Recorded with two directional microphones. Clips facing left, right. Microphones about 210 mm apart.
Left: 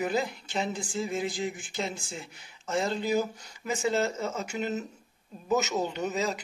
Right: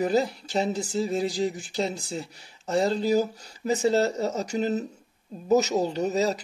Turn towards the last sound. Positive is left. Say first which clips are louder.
# right 5 dB
turn(degrees=-40)  # may be behind; listen again after turning